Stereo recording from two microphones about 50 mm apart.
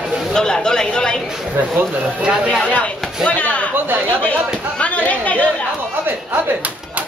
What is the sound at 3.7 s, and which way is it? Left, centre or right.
Speech, right.